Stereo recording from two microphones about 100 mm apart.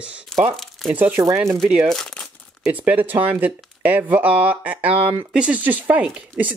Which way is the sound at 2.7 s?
15° right (ahead or behind).